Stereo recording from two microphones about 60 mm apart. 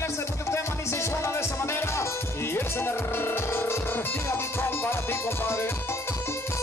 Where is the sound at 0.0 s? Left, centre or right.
Left.